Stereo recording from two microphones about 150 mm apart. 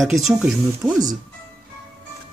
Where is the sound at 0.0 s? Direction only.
Centre (ahead or behind).